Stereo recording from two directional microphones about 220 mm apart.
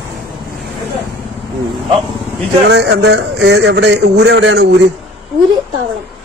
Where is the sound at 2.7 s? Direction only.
50° right (ahead or behind).